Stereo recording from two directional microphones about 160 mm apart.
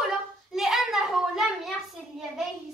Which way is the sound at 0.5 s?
Centre (ahead or behind).